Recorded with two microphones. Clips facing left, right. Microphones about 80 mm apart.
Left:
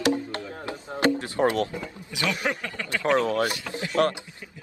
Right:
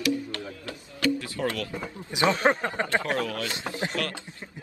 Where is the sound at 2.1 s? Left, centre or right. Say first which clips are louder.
Right 5 dB; right.